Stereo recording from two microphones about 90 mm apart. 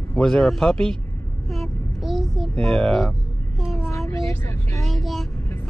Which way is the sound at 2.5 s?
5° left (ahead or behind).